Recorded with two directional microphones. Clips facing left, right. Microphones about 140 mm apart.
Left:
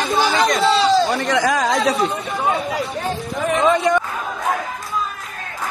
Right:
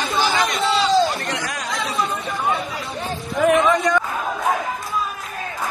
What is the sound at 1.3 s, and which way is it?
Chatter, 90° left.